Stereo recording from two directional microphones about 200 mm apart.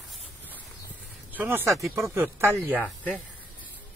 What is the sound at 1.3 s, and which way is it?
Speech, 10° right (ahead or behind).